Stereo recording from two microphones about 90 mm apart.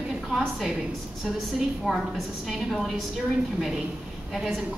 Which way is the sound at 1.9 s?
Centre (ahead or behind).